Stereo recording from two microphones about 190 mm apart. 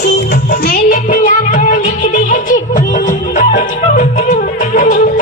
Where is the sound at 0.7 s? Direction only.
45° left (ahead or behind).